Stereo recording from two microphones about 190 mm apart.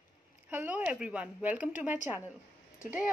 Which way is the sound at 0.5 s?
10° right (ahead or behind).